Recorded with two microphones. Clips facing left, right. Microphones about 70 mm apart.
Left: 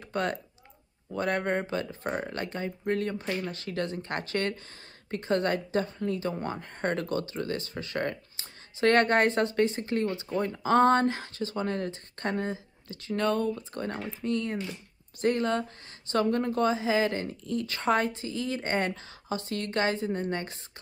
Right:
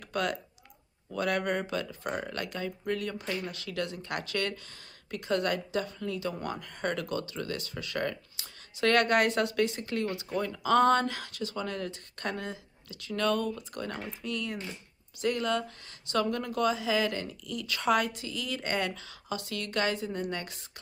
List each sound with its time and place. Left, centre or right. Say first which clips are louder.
0.1 s speech: left 1 dB; left